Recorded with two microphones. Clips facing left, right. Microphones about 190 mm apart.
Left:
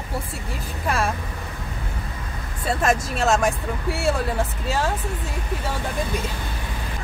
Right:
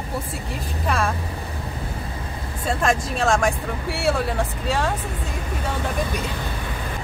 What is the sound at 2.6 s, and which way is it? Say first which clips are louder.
Speech: even; centre (ahead or behind).